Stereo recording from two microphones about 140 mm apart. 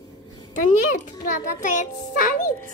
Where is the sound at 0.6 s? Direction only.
65° left (ahead or behind).